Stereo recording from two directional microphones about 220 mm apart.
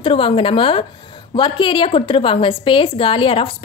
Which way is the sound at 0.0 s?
25° left (ahead or behind).